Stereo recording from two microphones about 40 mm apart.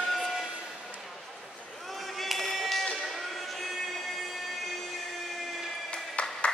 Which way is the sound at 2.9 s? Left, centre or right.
Centre.